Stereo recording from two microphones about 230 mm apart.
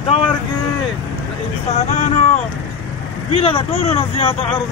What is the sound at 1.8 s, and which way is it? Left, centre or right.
Vehicle, left.